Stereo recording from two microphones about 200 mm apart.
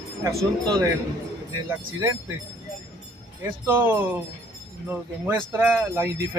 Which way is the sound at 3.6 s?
10° right (ahead or behind).